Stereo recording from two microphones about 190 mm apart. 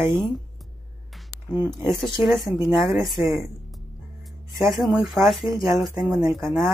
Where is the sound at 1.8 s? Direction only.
Centre (ahead or behind).